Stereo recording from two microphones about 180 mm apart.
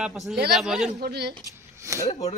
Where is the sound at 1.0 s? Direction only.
60° right (ahead or behind).